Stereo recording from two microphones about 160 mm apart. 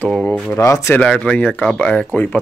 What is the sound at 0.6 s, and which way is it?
Speech, 20° left (ahead or behind).